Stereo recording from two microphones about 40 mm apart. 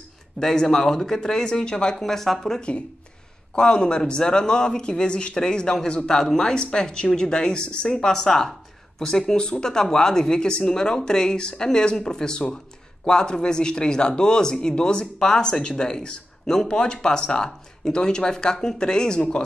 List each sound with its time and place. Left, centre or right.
0.4 s speech: centre
2.0 s speech: centre
2.7 s speech: left
3.5 s speech: left